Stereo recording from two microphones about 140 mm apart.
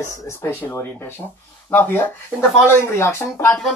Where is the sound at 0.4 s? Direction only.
15° left (ahead or behind).